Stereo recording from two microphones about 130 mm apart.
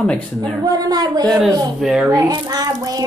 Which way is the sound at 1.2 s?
Centre (ahead or behind).